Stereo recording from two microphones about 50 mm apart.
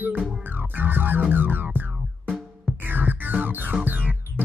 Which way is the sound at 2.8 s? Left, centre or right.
Right.